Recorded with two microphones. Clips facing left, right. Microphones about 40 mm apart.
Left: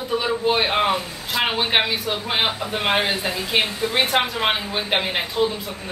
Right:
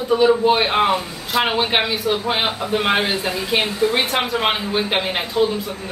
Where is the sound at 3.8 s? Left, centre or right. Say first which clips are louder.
Right 3 dB; right.